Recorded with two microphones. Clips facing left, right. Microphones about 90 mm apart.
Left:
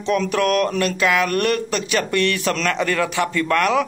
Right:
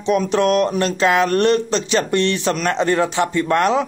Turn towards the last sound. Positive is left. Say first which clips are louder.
# right 2 dB
turn(degrees=-25)  # may be behind; listen again after turning